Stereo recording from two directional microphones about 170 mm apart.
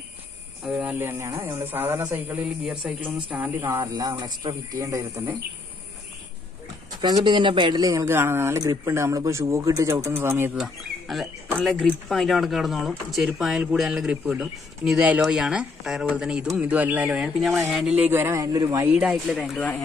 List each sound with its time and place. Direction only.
0.7 s speech: 5° right (ahead or behind)
7.0 s speech: 25° right (ahead or behind)
10.6 s speech: centre (ahead or behind); by 18.9 s 20° right (ahead or behind)
18.9 s speech: 5° right (ahead or behind)